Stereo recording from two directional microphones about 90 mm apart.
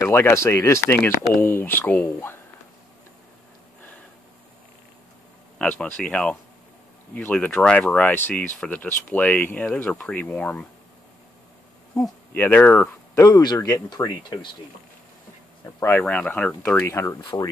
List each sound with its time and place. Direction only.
0.0 s speech: 30° left (ahead or behind)
5.6 s speech: 10° left (ahead or behind)
12.4 s speech: 20° left (ahead or behind)
13.1 s speech: 35° left (ahead or behind)
13.4 s speech: 55° left (ahead or behind)
16.0 s speech: 15° left (ahead or behind)
16.8 s speech: 30° left (ahead or behind)